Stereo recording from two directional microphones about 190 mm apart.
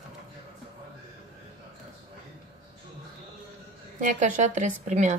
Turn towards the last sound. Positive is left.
turn(degrees=-40)  # may be behind; listen again after turning